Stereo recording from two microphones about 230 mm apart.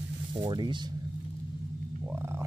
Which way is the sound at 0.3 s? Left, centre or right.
Centre.